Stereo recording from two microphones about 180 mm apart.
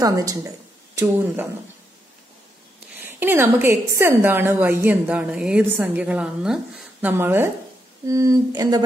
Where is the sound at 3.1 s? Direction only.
10° right (ahead or behind).